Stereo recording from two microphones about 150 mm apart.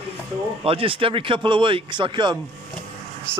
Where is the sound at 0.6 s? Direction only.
35° right (ahead or behind).